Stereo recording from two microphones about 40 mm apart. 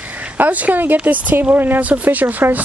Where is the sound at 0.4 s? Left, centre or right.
Right.